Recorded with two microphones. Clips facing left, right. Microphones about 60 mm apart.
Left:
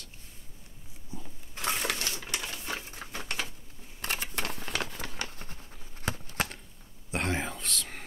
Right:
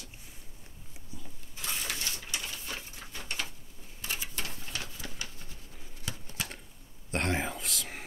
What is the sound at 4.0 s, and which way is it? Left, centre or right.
Typewriter, left.